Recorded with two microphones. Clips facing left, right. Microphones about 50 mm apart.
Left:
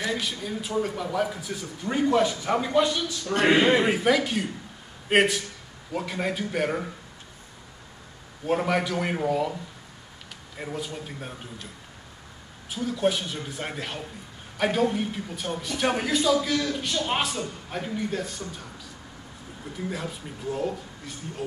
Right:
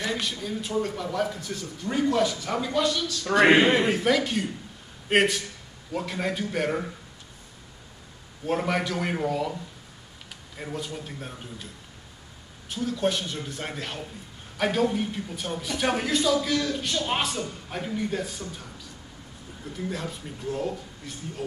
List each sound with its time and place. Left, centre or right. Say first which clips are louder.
0.2 s speech: even; centre
3.3 s a man's voice: right 4 dB; right
3.7 s speech: left 1 dB; centre
8.5 s speech: left 2 dB; centre
10.6 s speech: left 1 dB; centre
12.6 s speech: left 1 dB; centre